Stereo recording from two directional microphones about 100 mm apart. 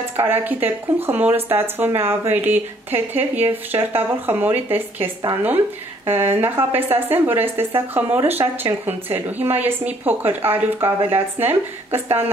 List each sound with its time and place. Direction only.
0.2 s speech: 20° right (ahead or behind)